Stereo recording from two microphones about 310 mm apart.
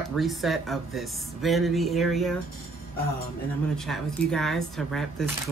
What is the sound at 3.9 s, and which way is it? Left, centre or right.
Speech, centre.